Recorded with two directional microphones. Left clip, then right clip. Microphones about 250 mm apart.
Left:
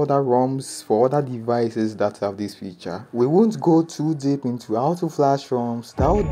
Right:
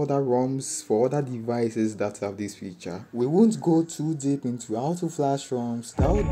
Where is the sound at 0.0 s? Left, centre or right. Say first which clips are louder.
Left 5 dB; centre.